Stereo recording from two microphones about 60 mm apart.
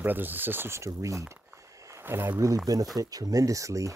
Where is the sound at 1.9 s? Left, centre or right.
Right.